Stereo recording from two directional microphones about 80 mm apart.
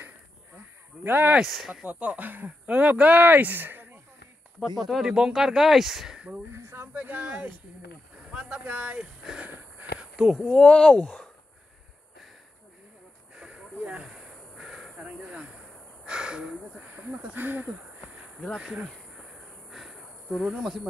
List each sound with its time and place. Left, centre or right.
1.0 s speech: right
1.4 s speech: centre
1.7 s speech: centre
4.7 s speech: centre
6.5 s a sound: right
6.9 s speech: right
9.5 s a sound: centre
10.3 s speech: centre
13.4 s a sound: centre
16.1 s speech: centre
19.7 s insect: centre